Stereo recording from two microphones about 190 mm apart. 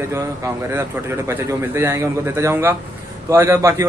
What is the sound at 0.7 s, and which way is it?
A man's voice, 15° right (ahead or behind).